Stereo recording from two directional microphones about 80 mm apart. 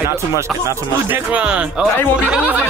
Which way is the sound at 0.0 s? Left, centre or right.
Right.